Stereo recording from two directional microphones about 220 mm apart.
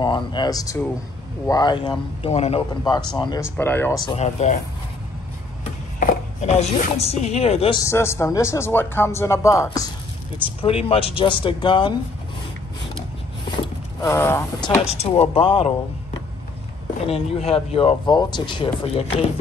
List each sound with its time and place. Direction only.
0.0 s a man's voice: 20° left (ahead or behind)
4.2 s speech: 30° left (ahead or behind)
5.9 s speech: 35° left (ahead or behind)
7.8 s a man's voice: 10° left (ahead or behind)
10.6 s speech: 25° left (ahead or behind)
14.0 s a man's voice: 10° left (ahead or behind)
14.9 s speech: 30° left (ahead or behind)